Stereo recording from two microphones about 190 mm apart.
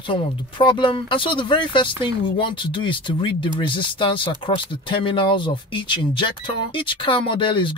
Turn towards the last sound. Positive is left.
turn(degrees=25)  # may be behind; listen again after turning